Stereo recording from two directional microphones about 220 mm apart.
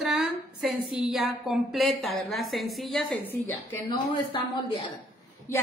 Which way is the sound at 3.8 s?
20° left (ahead or behind).